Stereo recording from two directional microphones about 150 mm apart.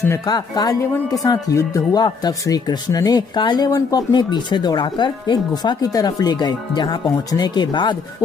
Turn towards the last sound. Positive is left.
turn(degrees=30)  # may be behind; listen again after turning